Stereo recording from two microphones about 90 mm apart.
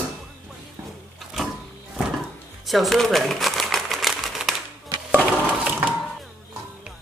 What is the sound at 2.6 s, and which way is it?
Crumpling, centre (ahead or behind).